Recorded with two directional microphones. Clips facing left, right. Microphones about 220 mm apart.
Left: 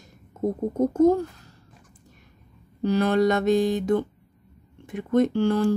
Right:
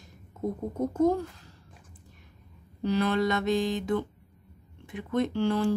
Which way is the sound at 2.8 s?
45° left (ahead or behind).